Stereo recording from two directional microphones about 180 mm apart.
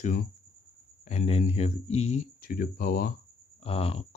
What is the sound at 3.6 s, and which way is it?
Speech, 35° left (ahead or behind).